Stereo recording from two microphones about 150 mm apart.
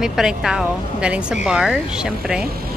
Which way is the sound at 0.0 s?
5° right (ahead or behind).